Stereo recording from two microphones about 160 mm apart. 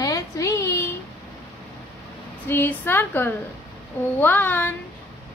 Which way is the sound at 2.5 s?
15° left (ahead or behind).